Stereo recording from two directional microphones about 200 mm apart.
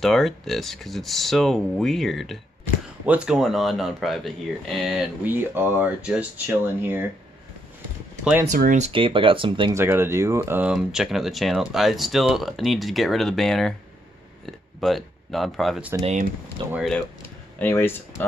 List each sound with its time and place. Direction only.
0.0 s speech: centre (ahead or behind)
8.2 s speech: 5° right (ahead or behind)
8.5 s speech: 40° right (ahead or behind); by 9.8 s 25° right (ahead or behind)
9.8 s speech: 10° right (ahead or behind)
16.0 s speech: 35° right (ahead or behind)
16.7 s speech: centre (ahead or behind)
17.6 s speech: 10° left (ahead or behind)